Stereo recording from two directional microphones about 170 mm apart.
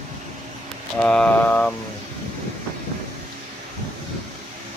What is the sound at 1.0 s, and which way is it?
Speech, 5° left (ahead or behind).